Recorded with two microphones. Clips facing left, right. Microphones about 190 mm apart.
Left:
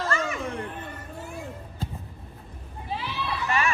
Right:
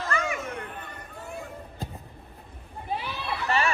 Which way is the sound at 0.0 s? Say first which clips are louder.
Left 2 dB; 30° left (ahead or behind).